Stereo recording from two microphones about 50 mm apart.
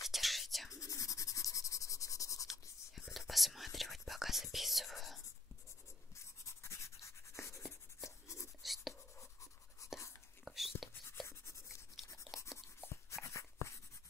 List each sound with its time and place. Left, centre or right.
0.1 s whispering: centre
0.7 s writing: left
3.1 s whispering: centre
6.1 s writing: left
8.6 s writing: centre
9.8 s whispering: left
10.4 s whispering: centre
11.2 s a sound: left
12.3 s writing: centre
13.1 s a sound: left